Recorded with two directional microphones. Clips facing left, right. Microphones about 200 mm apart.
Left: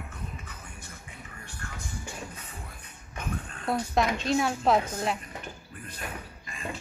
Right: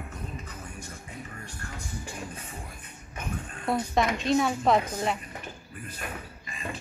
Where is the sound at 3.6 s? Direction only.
Centre (ahead or behind).